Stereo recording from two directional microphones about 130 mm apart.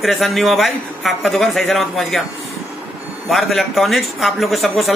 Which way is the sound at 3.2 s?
Centre (ahead or behind).